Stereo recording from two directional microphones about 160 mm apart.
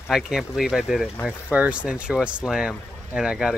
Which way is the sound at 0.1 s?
5° right (ahead or behind).